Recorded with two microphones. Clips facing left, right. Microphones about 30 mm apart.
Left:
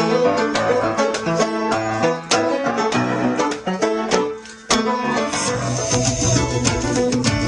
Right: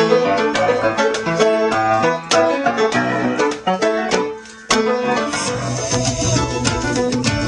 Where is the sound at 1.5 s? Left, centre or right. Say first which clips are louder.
Right 4 dB; right.